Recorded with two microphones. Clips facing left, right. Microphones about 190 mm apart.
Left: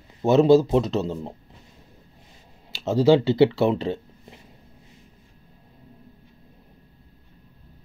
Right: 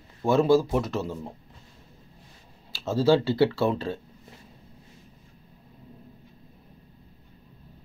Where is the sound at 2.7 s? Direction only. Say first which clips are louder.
Left 4 dB; 20° left (ahead or behind).